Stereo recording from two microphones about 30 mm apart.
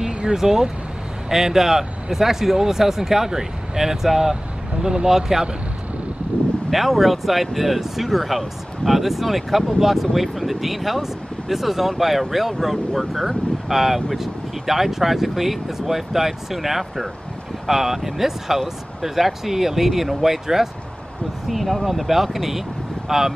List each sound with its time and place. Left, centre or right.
0.0 s a sound: right
0.4 s speech: centre
6.7 s speech: centre
21.5 s speech: centre